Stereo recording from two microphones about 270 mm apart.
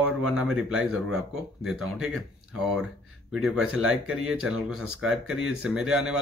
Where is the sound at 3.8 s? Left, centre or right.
Right.